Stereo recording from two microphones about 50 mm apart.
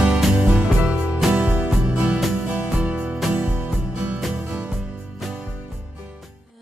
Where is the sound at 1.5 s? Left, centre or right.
Right.